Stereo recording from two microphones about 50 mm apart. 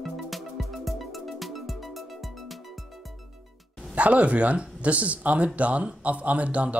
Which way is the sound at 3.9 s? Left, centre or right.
Right.